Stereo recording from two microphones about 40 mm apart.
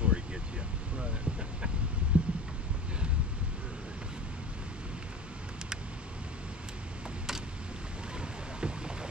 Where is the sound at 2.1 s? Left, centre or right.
Right.